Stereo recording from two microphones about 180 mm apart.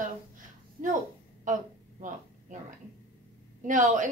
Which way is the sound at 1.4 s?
45° right (ahead or behind).